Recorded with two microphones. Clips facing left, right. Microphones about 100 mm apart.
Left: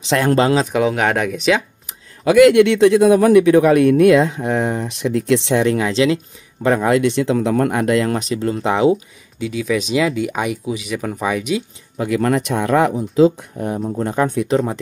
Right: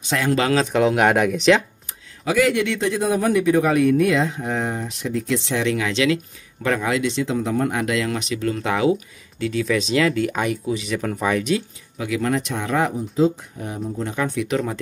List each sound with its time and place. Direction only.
0.1 s speech: 55° left (ahead or behind)
0.6 s speech: 10° left (ahead or behind)
0.8 s speech: centre (ahead or behind)
2.2 s speech: 65° left (ahead or behind)
5.6 s speech: 40° left (ahead or behind)
6.8 s speech: 50° left (ahead or behind)
7.8 s speech: 40° left (ahead or behind)
9.4 s speech: 10° left (ahead or behind)
12.0 s speech: 50° left (ahead or behind); by 13.5 s 90° left
13.6 s speech: 55° left (ahead or behind)
14.1 s speech: 45° left (ahead or behind)
14.5 s speech: 35° left (ahead or behind)